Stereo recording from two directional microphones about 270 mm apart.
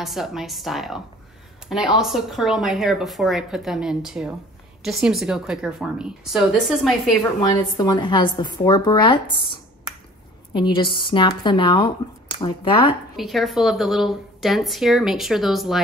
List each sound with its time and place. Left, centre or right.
0.0 s speech: centre
7.4 s a woman's voice: centre
13.1 s speech: centre